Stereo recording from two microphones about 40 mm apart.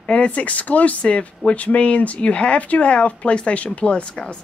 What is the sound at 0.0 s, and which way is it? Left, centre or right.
A woman's voice, left.